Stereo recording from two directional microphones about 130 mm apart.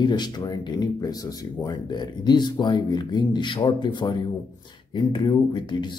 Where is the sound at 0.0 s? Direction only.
35° left (ahead or behind).